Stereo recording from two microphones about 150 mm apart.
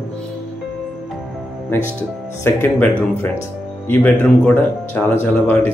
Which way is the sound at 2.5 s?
15° left (ahead or behind).